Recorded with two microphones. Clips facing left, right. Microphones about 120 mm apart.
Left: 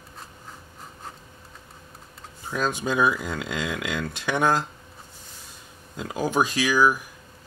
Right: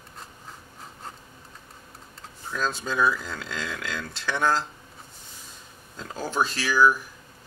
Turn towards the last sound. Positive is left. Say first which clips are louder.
# even
turn(degrees=15)  # may be behind; listen again after turning